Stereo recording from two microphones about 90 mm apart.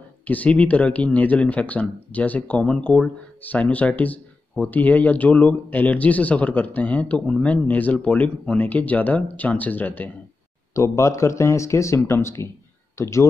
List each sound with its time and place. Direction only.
0.3 s speech: 15° left (ahead or behind)
10.7 s speech: 35° left (ahead or behind)